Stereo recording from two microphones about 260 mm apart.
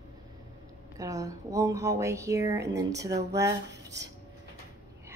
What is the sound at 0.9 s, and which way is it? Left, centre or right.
Speech, centre.